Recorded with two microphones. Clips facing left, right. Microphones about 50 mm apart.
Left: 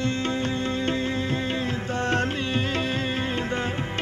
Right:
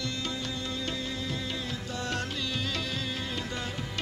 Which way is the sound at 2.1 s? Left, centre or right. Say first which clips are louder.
Left 8 dB; left.